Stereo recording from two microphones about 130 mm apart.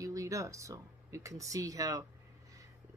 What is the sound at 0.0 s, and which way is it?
Speech, 25° right (ahead or behind).